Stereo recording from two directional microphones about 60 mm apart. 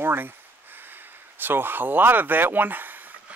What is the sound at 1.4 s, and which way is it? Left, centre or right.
Speech, right.